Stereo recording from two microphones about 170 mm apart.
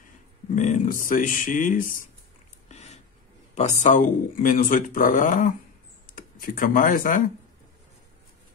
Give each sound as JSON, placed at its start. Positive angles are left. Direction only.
{"t": 0.6, "sound": "speech", "side_deg": 45}
{"t": 2.7, "sound": "a sound", "side_deg": 40}
{"t": 3.5, "sound": "speech", "side_deg": 40}